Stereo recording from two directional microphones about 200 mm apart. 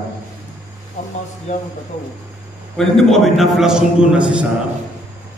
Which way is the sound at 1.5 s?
35° left (ahead or behind).